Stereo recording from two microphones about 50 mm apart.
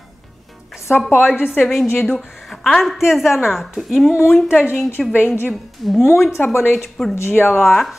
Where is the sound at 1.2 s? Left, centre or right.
Left.